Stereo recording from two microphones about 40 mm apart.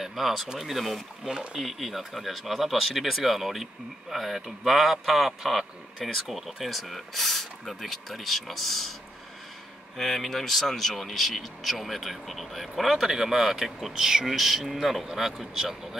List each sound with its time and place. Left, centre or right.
0.0 s a sound: centre
0.6 s speech: centre
1.2 s speech: centre
1.6 s speech: centre
9.9 s speech: centre